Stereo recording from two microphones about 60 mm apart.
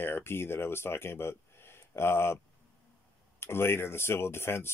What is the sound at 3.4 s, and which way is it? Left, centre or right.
Speech, left.